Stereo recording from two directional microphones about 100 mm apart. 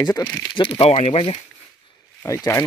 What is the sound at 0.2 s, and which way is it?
Speech, 45° left (ahead or behind).